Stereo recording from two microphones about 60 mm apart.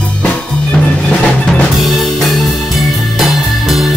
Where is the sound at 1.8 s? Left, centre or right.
Centre.